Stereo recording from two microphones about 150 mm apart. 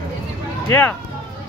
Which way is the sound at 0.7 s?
15° left (ahead or behind).